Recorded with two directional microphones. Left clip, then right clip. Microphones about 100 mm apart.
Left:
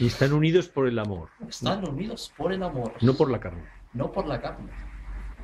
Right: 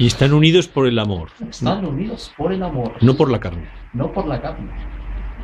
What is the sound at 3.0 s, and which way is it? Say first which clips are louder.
Speech: right 7 dB; 20° right (ahead or behind).